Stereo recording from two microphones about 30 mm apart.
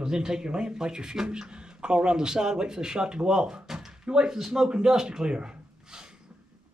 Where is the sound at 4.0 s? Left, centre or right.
Right.